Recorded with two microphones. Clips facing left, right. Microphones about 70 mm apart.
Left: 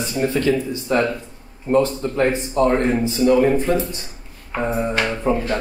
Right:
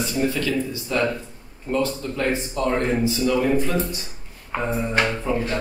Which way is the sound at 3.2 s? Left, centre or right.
Centre.